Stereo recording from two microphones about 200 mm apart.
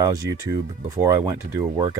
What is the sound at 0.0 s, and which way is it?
Speech, 15° right (ahead or behind).